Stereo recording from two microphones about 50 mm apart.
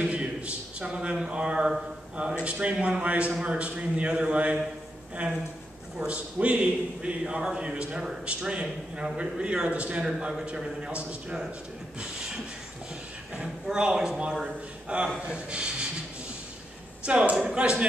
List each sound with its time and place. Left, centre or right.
0.0 s a sound: right
1.3 s a man's voice: right
5.9 s a man's voice: right
10.0 s a man's voice: centre
13.7 s a man's voice: centre
17.0 s a man's voice: right